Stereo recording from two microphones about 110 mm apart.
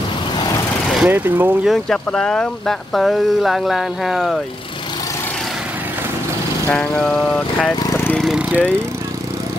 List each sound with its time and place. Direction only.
1.0 s speech: 15° right (ahead or behind)
1.6 s speech: centre (ahead or behind)
6.7 s vehicle: 10° left (ahead or behind)
7.9 s lawn mower: 20° left (ahead or behind)
8.2 s jackhammer: 5° right (ahead or behind)